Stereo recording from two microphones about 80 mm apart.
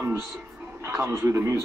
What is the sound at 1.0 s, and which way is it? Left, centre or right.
Speech, right.